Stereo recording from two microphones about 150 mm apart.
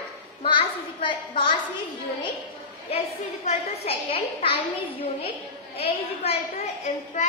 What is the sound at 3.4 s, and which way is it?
A woman's voice, 40° left (ahead or behind).